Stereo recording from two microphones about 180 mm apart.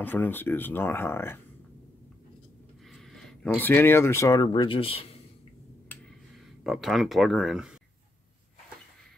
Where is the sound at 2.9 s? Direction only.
Centre (ahead or behind); by 5.0 s 30° left (ahead or behind).